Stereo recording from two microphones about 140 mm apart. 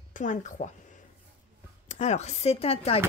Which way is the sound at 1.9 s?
55° left (ahead or behind).